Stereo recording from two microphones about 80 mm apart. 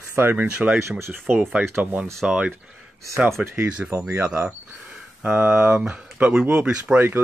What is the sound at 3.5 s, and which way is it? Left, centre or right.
Speech, right.